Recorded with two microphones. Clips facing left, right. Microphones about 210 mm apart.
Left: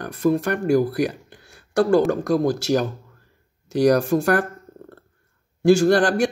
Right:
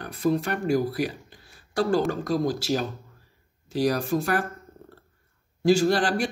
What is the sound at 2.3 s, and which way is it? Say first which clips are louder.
Speech: left 5 dB; 55° left (ahead or behind).